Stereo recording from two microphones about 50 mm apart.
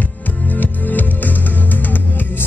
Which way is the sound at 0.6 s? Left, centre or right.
Left.